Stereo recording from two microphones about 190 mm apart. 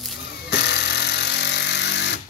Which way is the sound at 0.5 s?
65° left (ahead or behind).